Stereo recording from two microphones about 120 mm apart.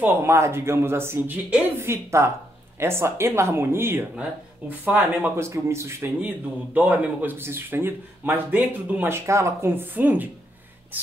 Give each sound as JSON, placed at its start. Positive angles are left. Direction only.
{"t": 0.0, "sound": "speech", "side_deg": -20}